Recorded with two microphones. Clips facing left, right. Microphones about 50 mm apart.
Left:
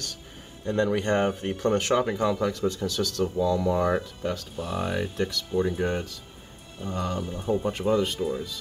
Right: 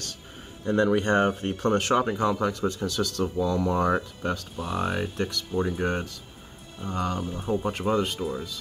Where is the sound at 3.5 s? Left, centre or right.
Right.